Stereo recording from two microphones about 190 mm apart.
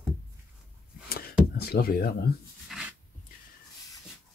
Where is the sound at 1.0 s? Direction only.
55° left (ahead or behind).